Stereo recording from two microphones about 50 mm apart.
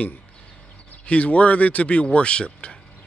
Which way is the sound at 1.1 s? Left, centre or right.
Left.